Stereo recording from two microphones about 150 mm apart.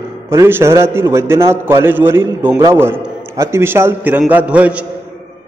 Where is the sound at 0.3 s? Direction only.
15° right (ahead or behind).